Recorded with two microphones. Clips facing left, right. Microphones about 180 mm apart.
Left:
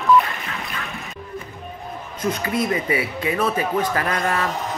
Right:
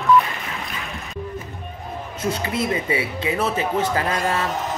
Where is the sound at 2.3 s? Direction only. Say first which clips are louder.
Left 1 dB; 25° right (ahead or behind).